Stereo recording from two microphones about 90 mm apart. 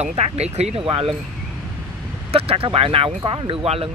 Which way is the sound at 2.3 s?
90° right.